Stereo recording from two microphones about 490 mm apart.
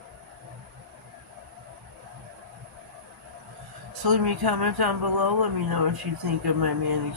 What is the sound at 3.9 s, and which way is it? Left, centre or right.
Speech, right.